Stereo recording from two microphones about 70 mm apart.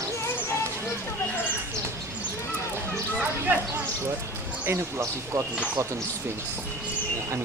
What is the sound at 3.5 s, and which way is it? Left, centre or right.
Speech, right.